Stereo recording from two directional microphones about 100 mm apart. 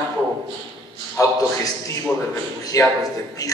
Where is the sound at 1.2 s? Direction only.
35° left (ahead or behind).